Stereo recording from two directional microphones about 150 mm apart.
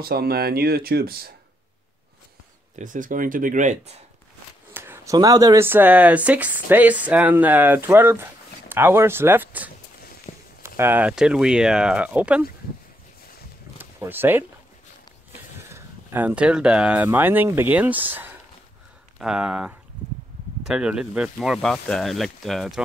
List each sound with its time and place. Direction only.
0.0 s speech: 90° right
2.7 s speech: 60° right (ahead or behind)
4.7 s speech: 20° right (ahead or behind)
10.3 s a sound: 50° left (ahead or behind)
10.8 s speech: 10° right (ahead or behind)
13.7 s a sound: 15° right (ahead or behind)
15.7 s speech: 15° right (ahead or behind); by 22.8 s centre (ahead or behind)